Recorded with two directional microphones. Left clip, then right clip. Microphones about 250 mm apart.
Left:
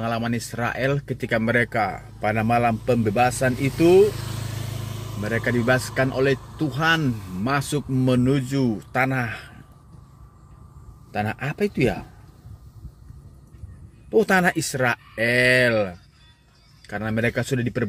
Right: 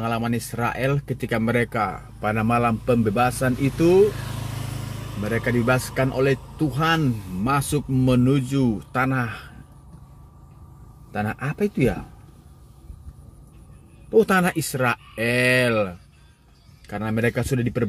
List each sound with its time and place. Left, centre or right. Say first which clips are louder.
0.0 s speech: even; centre
4.0 s vehicle: even; left
5.2 s speech: even; centre
11.1 s speech: left 1 dB; centre
14.1 s speech: even; centre